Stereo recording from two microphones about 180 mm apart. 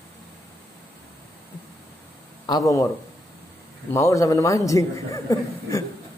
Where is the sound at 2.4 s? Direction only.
20° left (ahead or behind).